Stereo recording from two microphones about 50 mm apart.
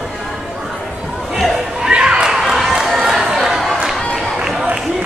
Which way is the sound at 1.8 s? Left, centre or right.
Centre.